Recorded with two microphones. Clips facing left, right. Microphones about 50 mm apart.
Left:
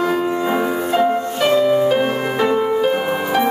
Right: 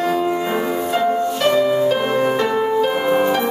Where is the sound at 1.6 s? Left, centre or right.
Centre.